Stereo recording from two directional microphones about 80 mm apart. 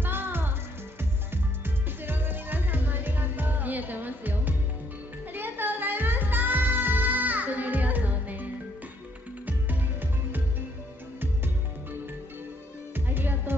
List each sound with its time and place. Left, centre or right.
0.0 s music: right
2.0 s music: right
9.5 s music: right
12.9 s music: right